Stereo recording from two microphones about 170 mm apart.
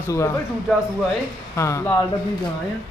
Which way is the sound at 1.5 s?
15° left (ahead or behind).